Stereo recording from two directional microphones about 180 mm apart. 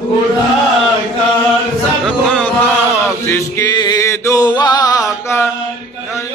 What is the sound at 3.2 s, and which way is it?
Music, 15° left (ahead or behind).